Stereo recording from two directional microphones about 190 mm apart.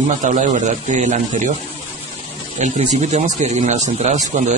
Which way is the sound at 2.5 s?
40° right (ahead or behind).